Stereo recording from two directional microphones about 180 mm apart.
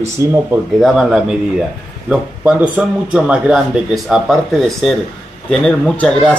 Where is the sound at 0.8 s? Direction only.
Centre (ahead or behind).